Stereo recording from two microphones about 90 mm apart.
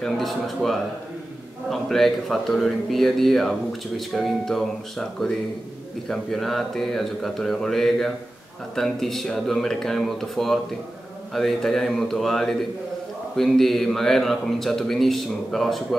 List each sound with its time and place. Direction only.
0.0 s speech: centre (ahead or behind)